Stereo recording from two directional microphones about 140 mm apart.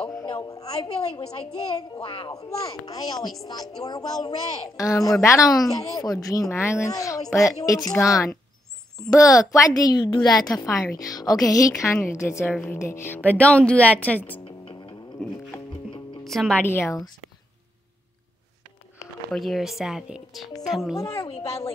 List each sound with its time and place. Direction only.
0.1 s a sound: 25° left (ahead or behind)
2.0 s a child's voice: 35° left (ahead or behind)
2.5 s a woman's voice: 25° left (ahead or behind)
14.4 s music: 40° left (ahead or behind)
16.3 s speech: 5° left (ahead or behind)
16.6 s speech: 20° left (ahead or behind)
19.3 s speech: centre (ahead or behind)
21.4 s a woman's voice: 25° left (ahead or behind)